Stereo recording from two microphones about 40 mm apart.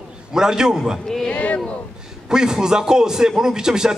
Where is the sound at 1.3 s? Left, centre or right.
Left.